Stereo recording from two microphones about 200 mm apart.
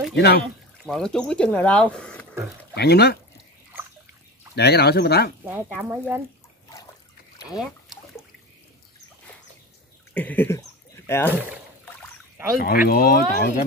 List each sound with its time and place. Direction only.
0.1 s speech: 55° left (ahead or behind)
0.8 s speech: 5° left (ahead or behind)
2.7 s speech: 55° left (ahead or behind)
4.6 s speech: 55° left (ahead or behind)
5.4 s speech: 10° right (ahead or behind)
10.1 s a sound: 10° left (ahead or behind)
11.1 s speech: 10° left (ahead or behind)
12.5 s speech: 50° left (ahead or behind)